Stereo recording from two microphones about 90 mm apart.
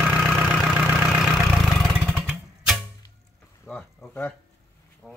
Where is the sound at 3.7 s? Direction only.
15° left (ahead or behind).